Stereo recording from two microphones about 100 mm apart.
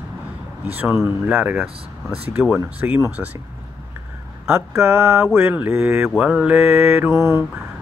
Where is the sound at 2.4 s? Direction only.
10° right (ahead or behind).